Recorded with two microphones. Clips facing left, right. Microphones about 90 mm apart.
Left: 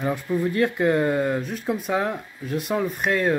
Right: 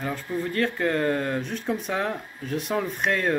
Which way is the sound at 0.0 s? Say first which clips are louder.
Left 5 dB; 15° left (ahead or behind).